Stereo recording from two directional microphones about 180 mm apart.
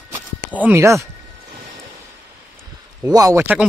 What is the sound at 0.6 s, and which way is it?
Speech, 10° right (ahead or behind).